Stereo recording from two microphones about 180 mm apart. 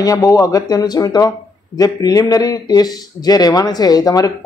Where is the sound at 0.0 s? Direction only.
20° left (ahead or behind).